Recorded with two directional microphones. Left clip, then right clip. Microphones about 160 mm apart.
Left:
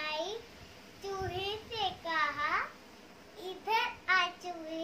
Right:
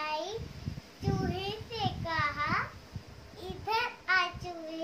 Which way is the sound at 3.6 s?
Centre (ahead or behind).